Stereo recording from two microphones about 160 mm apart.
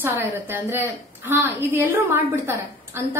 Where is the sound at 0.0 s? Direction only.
15° right (ahead or behind).